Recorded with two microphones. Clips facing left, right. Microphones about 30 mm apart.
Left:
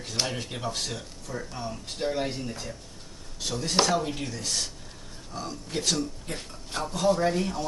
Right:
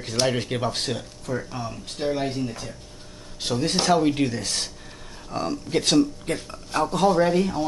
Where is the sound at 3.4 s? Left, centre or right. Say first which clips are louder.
Right 6 dB; right.